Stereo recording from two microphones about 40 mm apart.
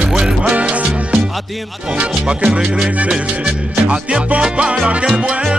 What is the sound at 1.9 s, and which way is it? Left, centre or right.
Salsa music, right.